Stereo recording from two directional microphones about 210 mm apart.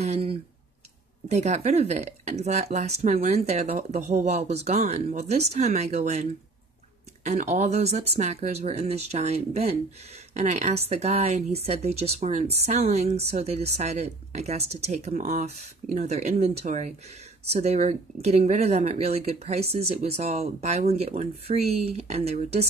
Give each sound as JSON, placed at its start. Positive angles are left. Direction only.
{"t": 0.0, "sound": "a sound", "side_deg": -30}
{"t": 1.3, "sound": "speech", "side_deg": -30}
{"t": 7.2, "sound": "speech", "side_deg": -35}